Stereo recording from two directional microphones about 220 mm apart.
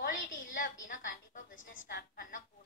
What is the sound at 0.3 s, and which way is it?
Music, 35° left (ahead or behind).